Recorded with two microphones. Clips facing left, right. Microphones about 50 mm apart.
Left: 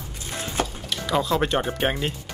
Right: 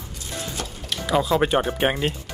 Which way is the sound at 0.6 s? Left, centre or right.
Centre.